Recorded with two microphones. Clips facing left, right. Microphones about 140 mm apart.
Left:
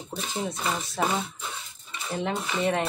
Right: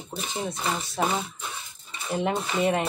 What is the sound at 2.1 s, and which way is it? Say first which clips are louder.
Speech: right 3 dB; 20° right (ahead or behind).